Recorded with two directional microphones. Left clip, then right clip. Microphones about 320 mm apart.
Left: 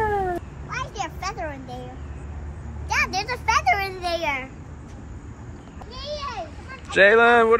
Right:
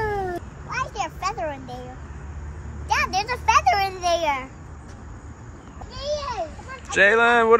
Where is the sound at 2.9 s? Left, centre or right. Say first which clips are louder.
Right 1 dB; centre.